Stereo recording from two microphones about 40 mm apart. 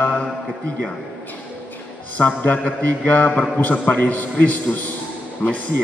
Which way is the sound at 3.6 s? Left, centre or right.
Left.